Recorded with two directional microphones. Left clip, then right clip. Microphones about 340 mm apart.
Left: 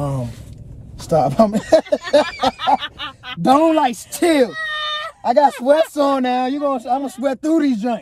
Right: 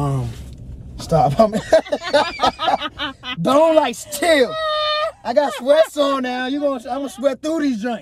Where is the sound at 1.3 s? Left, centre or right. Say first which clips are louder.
Even; left.